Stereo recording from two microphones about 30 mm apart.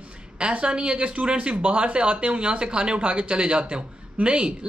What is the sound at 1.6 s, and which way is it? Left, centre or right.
A woman's voice, right.